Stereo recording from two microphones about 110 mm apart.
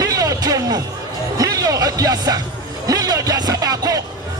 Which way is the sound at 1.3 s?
35° right (ahead or behind).